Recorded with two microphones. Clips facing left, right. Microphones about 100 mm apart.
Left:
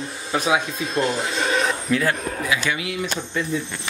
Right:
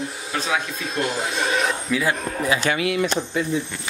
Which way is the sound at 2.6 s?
55° right (ahead or behind).